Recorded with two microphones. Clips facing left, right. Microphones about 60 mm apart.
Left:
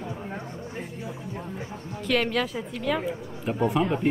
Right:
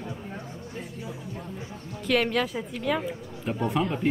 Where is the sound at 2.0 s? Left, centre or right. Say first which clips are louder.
Even; centre.